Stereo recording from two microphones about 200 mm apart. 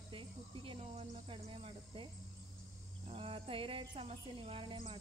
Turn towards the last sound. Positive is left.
turn(degrees=-25)  # may be behind; listen again after turning